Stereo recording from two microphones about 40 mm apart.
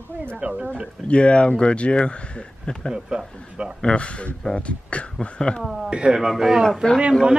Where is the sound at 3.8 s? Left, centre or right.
Left.